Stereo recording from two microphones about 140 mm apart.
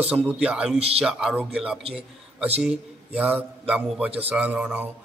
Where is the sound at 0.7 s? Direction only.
45° right (ahead or behind).